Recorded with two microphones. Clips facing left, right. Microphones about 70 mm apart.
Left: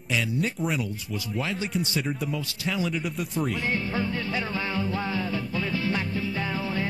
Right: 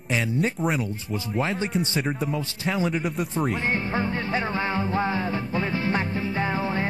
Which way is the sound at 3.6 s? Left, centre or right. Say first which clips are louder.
Right 2 dB; right.